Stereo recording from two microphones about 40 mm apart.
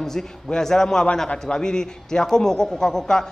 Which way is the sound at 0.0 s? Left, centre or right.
Centre.